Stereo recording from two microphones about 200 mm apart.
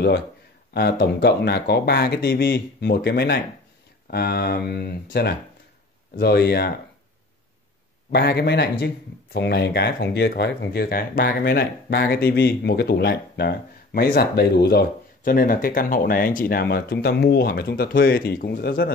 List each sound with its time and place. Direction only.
0.7 s speech: 55° left (ahead or behind)
8.1 s speech: 55° left (ahead or behind)